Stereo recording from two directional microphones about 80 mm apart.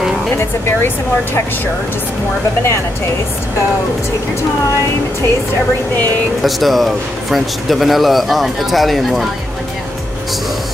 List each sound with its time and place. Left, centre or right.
0.4 s speech: left
6.4 s a man's voice: centre